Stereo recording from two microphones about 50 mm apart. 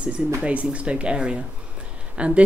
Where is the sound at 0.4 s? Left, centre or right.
Right.